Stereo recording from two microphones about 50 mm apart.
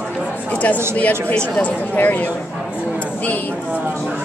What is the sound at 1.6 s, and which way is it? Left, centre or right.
Speech, left.